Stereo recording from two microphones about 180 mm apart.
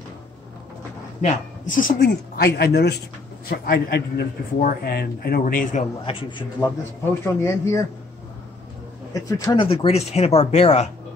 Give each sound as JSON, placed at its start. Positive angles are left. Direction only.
{"t": 1.2, "sound": "speech", "side_deg": 50}
{"t": 6.0, "sound": "speech", "side_deg": 30}
{"t": 7.2, "sound": "speech", "side_deg": 15}
{"t": 9.1, "sound": "speech", "side_deg": 20}
{"t": 9.7, "sound": "speech", "side_deg": 35}